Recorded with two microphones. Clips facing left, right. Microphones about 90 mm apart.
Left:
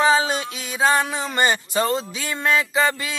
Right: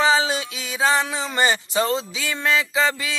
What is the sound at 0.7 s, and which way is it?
Speech, 5° left (ahead or behind).